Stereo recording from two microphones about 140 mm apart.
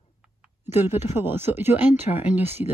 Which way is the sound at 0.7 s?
15° right (ahead or behind).